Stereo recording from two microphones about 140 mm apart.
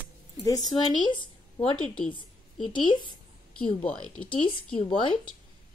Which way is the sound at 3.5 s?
5° left (ahead or behind).